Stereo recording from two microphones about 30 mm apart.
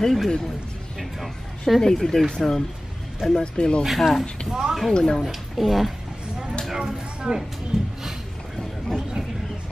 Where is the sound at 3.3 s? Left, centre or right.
Left.